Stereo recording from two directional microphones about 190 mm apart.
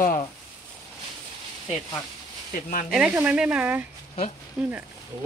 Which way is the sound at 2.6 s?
45° left (ahead or behind).